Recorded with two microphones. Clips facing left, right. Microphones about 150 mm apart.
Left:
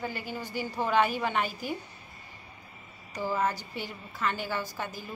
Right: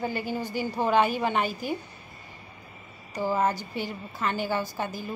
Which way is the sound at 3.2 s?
25° right (ahead or behind).